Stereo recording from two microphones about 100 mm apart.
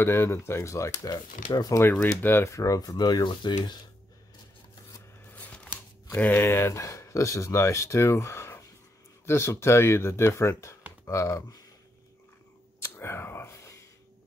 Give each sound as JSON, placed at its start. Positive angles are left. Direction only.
{"t": 0.0, "sound": "speech", "side_deg": 25}
{"t": 1.1, "sound": "speech", "side_deg": 40}
{"t": 1.8, "sound": "speech", "side_deg": 25}
{"t": 5.3, "sound": "a sound", "side_deg": 15}
{"t": 6.1, "sound": "speech", "side_deg": 20}
{"t": 12.8, "sound": "a sound", "side_deg": 25}